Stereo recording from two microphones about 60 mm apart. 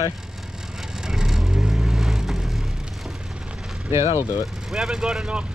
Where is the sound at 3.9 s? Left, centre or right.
Right.